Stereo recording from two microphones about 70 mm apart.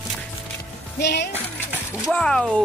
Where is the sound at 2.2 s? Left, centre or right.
Centre.